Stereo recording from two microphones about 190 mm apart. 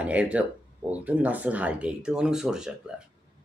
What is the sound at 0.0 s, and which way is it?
Speech, 5° right (ahead or behind).